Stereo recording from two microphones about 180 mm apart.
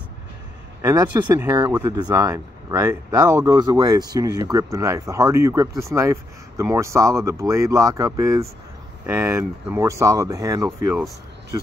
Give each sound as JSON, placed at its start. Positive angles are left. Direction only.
{"t": 0.8, "sound": "speech", "side_deg": -20}